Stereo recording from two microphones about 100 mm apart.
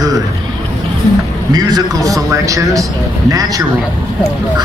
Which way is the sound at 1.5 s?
40° right (ahead or behind).